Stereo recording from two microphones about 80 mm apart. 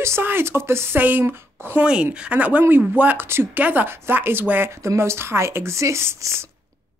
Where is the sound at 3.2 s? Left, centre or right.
Right.